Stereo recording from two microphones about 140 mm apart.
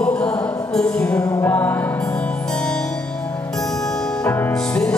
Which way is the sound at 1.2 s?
25° left (ahead or behind).